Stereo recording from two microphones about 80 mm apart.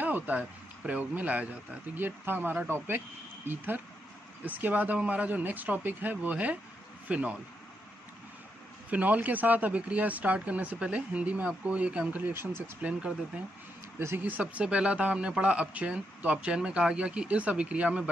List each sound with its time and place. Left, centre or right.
0.0 s a man's voice: right
8.9 s a man's voice: right
12.3 s speech: right
13.9 s a man's voice: right